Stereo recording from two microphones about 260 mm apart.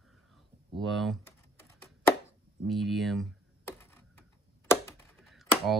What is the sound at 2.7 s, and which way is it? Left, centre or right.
Computer keyboard, centre.